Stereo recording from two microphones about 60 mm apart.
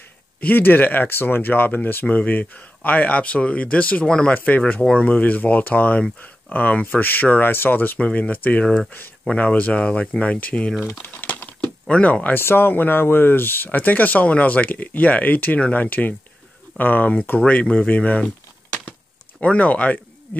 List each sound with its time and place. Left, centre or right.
0.4 s speech: left; by 4.3 s centre
4.3 s speech: left
11.0 s typing: left
11.9 s speech: left
12.4 s speech: left
17.4 s speech: left
18.2 s a sound: left
19.4 s speech: left